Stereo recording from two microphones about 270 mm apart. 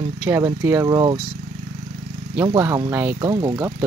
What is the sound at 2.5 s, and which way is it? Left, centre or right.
Speech, centre.